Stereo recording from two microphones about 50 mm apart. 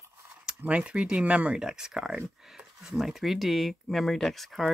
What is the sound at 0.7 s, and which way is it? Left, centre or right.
Speech, right.